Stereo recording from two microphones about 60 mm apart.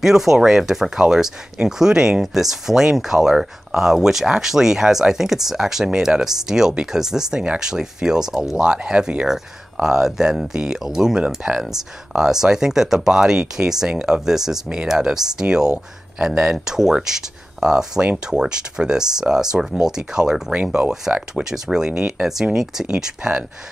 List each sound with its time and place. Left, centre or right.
0.0 s speech: centre